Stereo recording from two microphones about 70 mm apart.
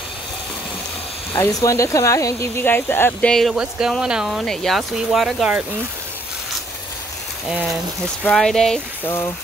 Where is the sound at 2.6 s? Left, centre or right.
Left.